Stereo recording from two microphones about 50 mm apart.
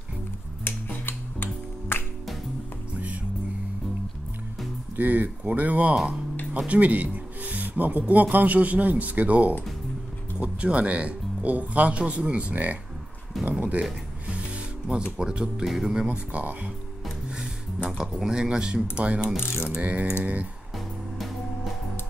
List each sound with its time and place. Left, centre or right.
0.7 s music: left
4.9 s speech: right
6.7 s music: right
8.1 s speech: right
14.2 s music: right
15.1 s speech: centre
15.6 s speech: centre
15.9 s speech: centre
16.3 s speech: right
17.8 s speech: centre
19.4 s mechanisms: left
19.8 s speech: right